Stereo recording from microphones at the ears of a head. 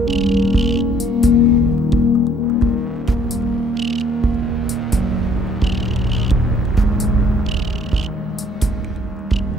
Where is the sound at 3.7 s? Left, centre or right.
Right.